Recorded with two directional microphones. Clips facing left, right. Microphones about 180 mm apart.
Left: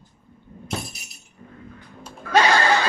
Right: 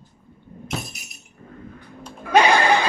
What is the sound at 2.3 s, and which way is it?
Snicker, 15° right (ahead or behind).